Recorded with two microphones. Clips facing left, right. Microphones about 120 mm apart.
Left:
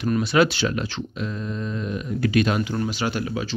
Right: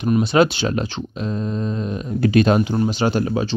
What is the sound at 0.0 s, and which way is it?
Speech, 20° right (ahead or behind).